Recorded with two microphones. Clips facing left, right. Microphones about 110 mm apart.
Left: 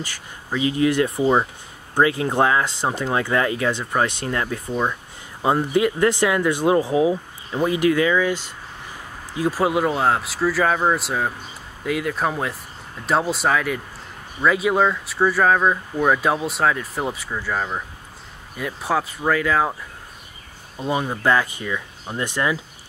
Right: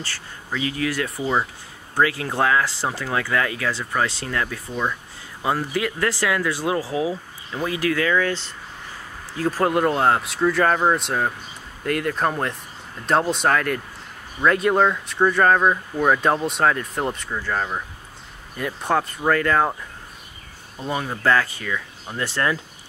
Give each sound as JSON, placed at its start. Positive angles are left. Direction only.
{"t": 0.0, "sound": "speech", "side_deg": 15}
{"t": 20.7, "sound": "speech", "side_deg": 15}